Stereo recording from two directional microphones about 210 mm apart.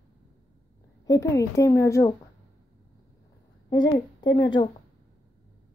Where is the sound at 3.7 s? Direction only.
20° left (ahead or behind).